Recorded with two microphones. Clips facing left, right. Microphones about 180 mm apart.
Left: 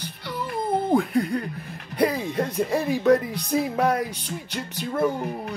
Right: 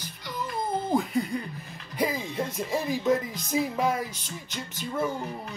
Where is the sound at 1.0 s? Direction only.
65° left (ahead or behind).